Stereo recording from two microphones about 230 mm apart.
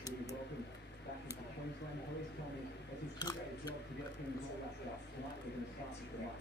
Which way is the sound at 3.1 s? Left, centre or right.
Centre.